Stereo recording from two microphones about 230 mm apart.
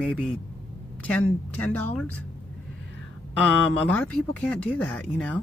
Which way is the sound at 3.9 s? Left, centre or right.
Centre.